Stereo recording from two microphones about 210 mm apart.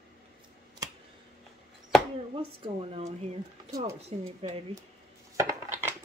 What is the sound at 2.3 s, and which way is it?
Speech, 25° right (ahead or behind).